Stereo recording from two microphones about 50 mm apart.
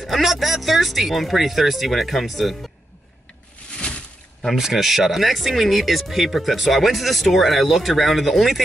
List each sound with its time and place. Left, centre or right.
0.0 s speech: centre
3.8 s a sound: left
4.5 s speech: centre